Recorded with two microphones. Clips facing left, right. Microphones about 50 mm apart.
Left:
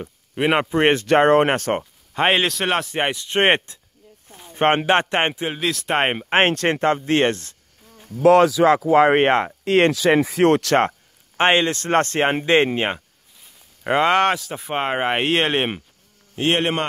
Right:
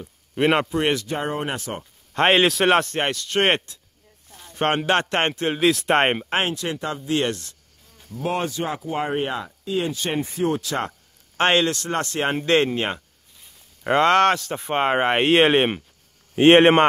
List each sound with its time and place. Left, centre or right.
0.3 s a sound: centre
0.7 s speech: left
1.0 s speech: left
2.1 s a man's voice: centre
3.0 s speech: centre
5.5 s a man's voice: centre
6.4 s speech: left
8.2 s speech: left
10.9 s a sound: left
11.8 s speech: left
12.3 s speech: left
13.4 s speech: centre
16.3 s a man's voice: right